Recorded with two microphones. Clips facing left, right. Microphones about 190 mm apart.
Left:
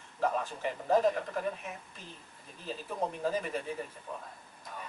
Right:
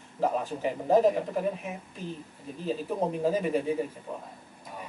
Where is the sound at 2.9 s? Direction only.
20° right (ahead or behind).